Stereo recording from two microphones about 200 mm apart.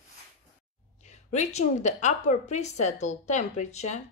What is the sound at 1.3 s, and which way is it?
A woman's voice, 35° left (ahead or behind).